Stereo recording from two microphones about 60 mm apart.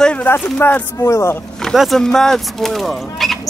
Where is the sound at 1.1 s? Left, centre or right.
Left.